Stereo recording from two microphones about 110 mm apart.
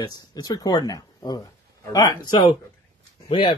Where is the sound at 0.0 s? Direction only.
40° left (ahead or behind).